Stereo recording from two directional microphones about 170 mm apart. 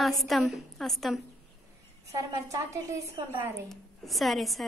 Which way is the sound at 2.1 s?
20° right (ahead or behind).